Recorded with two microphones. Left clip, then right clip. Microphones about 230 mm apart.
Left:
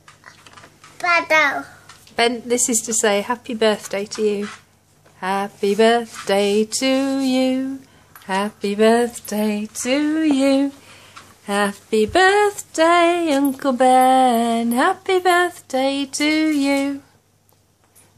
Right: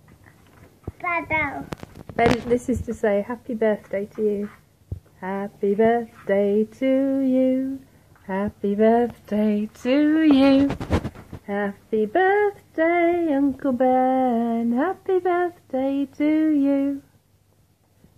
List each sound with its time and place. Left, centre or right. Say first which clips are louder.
0.9 s a child's voice: left 8 dB; left
2.1 s female singing: left 1 dB; centre
8.3 s speech: left 4 dB; centre
11.4 s speech: left 6 dB; left
12.1 s female singing: left 4 dB; centre